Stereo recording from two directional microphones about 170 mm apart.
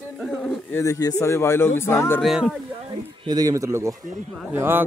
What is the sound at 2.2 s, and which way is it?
Speech, centre (ahead or behind).